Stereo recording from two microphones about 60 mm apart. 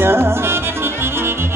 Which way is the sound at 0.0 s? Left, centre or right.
Right.